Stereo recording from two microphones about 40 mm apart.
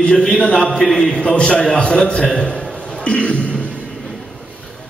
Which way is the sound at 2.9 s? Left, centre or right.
Left.